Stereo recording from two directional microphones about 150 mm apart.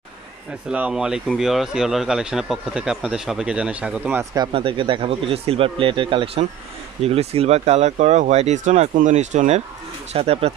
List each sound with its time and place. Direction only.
0.7 s speech: 5° right (ahead or behind)
4.5 s speech: 35° right (ahead or behind); by 9.6 s 50° right (ahead or behind)
10.1 s speech: 40° right (ahead or behind)